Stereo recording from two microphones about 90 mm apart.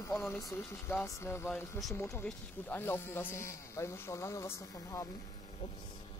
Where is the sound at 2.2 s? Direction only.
20° left (ahead or behind); by 5.1 s 35° left (ahead or behind).